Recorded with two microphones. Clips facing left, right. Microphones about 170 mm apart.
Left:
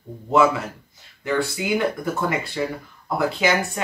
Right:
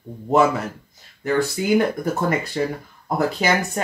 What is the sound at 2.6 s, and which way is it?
Speech, 40° right (ahead or behind).